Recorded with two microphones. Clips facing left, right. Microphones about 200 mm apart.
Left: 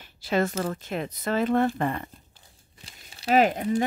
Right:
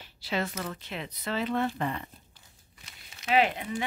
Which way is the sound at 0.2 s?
45° left (ahead or behind).